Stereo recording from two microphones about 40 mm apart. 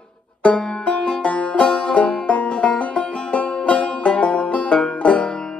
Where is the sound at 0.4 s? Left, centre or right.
Left.